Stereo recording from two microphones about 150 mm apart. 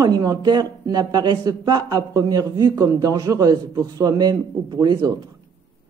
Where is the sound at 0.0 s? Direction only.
25° right (ahead or behind).